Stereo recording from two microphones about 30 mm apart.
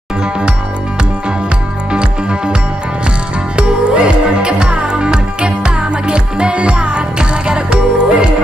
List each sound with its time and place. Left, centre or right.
1.9 s music: right
3.5 s music: right